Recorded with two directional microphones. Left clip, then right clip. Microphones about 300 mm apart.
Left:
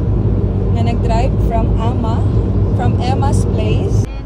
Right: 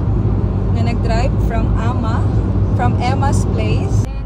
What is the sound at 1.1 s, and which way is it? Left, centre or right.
Vehicle, centre.